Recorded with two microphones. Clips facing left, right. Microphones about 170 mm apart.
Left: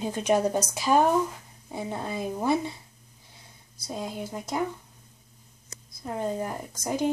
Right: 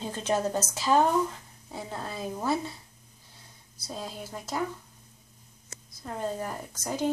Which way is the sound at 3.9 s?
15° left (ahead or behind).